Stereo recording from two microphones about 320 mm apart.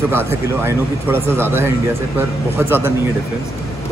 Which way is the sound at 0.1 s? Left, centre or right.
Centre.